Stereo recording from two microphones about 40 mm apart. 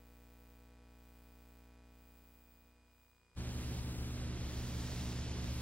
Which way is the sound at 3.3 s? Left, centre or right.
Left.